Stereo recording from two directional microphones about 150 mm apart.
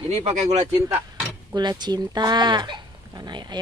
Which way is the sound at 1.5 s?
30° right (ahead or behind).